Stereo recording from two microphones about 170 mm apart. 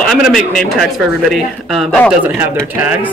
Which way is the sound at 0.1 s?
Centre (ahead or behind).